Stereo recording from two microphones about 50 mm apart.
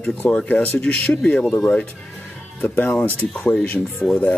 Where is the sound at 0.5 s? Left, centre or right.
Left.